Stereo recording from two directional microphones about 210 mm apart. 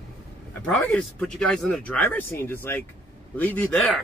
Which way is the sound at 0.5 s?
5° left (ahead or behind).